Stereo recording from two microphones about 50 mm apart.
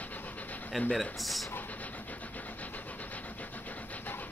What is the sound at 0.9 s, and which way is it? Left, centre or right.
Speech, centre.